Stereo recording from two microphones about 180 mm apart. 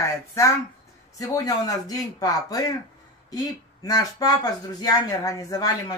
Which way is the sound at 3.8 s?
20° left (ahead or behind).